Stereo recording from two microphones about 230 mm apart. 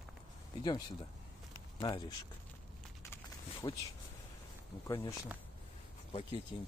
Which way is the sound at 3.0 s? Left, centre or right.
Centre.